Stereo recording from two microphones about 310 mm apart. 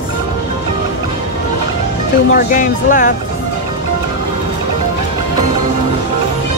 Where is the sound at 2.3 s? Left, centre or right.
Left.